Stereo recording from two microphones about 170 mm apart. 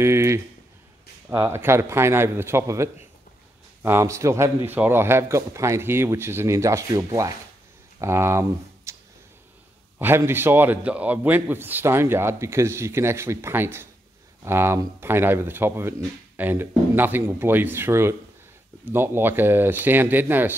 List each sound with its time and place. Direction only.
0.0 s a sound: 15° right (ahead or behind)
1.3 s a man's voice: 20° right (ahead or behind)
9.9 s a man's voice: 15° right (ahead or behind)